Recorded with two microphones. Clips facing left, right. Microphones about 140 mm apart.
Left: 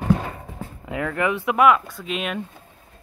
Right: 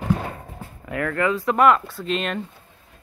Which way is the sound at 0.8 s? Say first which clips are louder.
Right 1 dB; 15° left (ahead or behind).